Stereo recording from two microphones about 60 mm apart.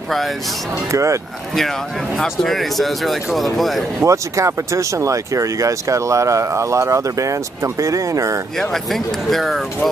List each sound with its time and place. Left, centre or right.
0.9 s speech: right
2.2 s speech: centre
4.0 s speech: right
8.5 s speech: centre